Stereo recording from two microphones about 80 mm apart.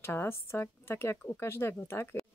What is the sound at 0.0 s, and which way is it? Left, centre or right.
Speech, left.